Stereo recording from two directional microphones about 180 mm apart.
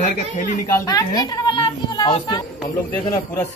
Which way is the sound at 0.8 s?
20° left (ahead or behind).